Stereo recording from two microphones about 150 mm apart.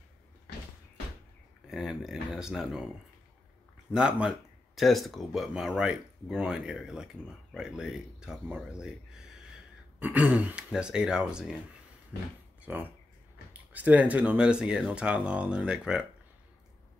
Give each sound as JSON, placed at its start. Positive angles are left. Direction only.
{"t": 1.7, "sound": "speech", "side_deg": 0}
{"t": 3.9, "sound": "speech", "side_deg": -5}
{"t": 9.9, "sound": "speech", "side_deg": -10}
{"t": 12.1, "sound": "speech", "side_deg": 90}
{"t": 12.6, "sound": "speech", "side_deg": -10}